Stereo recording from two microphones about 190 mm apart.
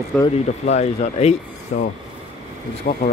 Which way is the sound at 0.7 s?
35° left (ahead or behind).